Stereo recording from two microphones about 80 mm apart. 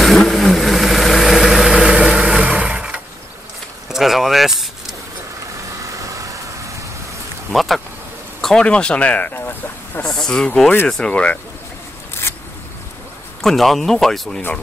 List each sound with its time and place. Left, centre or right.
0.3 s vehicle: centre
3.9 s a sound: centre
5.9 s vehicle: right
7.5 s speech: centre
8.4 s a sound: centre
8.6 s speech: centre
10.0 s speech: centre
12.1 s a sound: left
13.4 s speech: centre